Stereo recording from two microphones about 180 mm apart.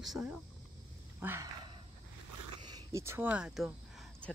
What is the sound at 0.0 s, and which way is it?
Speech, centre (ahead or behind).